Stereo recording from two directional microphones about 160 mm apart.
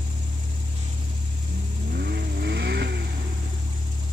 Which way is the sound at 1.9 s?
85° right.